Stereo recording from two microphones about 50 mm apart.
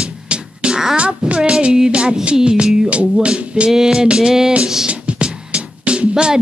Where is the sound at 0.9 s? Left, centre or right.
Right.